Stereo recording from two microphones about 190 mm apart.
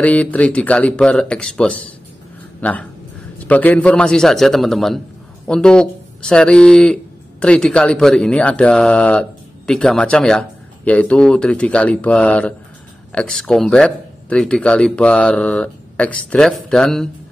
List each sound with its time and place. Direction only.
0.0 s speech: 10° left (ahead or behind)